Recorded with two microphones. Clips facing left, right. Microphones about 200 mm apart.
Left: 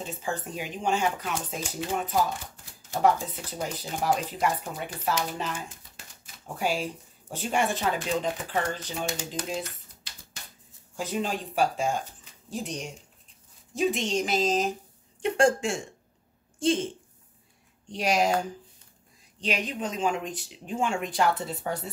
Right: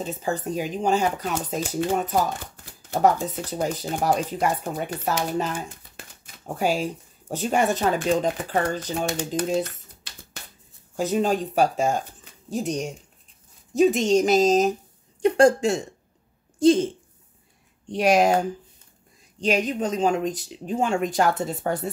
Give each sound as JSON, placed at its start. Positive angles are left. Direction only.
{"t": 0.0, "sound": "speech", "side_deg": -40}
{"t": 3.5, "sound": "speech", "side_deg": -45}
{"t": 11.0, "sound": "a woman's voice", "side_deg": -45}
{"t": 17.9, "sound": "speech", "side_deg": -55}
{"t": 19.4, "sound": "speech", "side_deg": -45}